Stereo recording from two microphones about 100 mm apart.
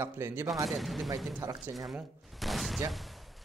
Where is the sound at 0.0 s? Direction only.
25° right (ahead or behind).